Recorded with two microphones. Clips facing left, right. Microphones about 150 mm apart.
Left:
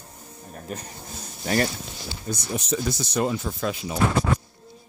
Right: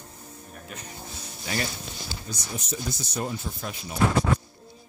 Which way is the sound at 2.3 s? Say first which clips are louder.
Left 9 dB; 90° left.